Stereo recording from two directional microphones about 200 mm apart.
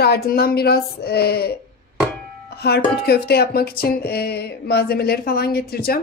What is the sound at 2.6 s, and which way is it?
A woman's voice, 55° left (ahead or behind).